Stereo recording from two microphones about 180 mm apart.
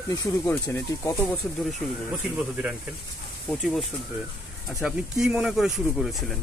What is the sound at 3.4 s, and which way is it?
Speech, 5° left (ahead or behind).